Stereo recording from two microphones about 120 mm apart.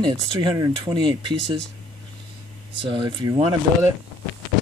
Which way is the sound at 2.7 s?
45° right (ahead or behind).